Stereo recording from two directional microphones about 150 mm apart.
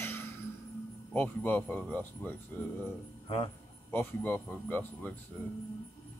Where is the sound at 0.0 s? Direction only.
15° left (ahead or behind).